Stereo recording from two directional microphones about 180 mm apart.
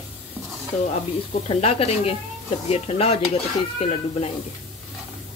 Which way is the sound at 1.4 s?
35° left (ahead or behind).